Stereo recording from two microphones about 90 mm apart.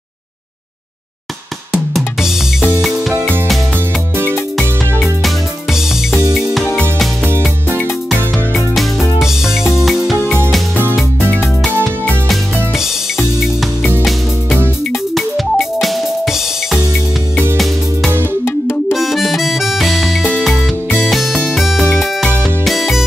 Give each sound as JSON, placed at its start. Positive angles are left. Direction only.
{"t": 2.0, "sound": "drum", "side_deg": -5}
{"t": 5.0, "sound": "music", "side_deg": -5}
{"t": 9.8, "sound": "music", "side_deg": 0}
{"t": 11.1, "sound": "music", "side_deg": 20}
{"t": 15.1, "sound": "music", "side_deg": 0}
{"t": 18.4, "sound": "music", "side_deg": 25}
{"t": 18.9, "sound": "music", "side_deg": 0}